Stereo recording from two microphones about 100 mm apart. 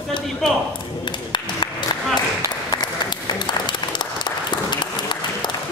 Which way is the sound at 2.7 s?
50° left (ahead or behind).